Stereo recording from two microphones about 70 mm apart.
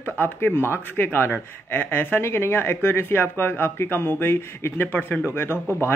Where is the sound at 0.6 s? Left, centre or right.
Left.